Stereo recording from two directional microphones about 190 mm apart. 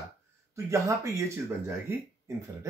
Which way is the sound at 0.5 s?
15° right (ahead or behind).